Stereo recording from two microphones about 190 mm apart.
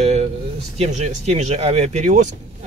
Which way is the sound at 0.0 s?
35° right (ahead or behind).